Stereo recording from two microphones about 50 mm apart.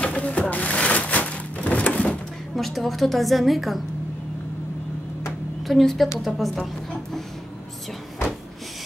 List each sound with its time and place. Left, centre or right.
0.0 s a sound: left
2.5 s a woman's voice: centre
5.7 s a woman's voice: centre